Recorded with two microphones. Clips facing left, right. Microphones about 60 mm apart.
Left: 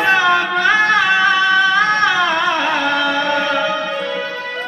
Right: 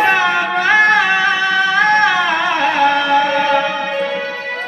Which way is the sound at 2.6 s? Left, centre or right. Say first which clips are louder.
Right 3 dB; right.